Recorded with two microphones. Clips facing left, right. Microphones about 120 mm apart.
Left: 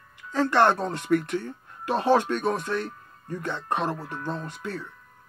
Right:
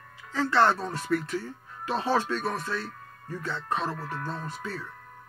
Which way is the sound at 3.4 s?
15° left (ahead or behind).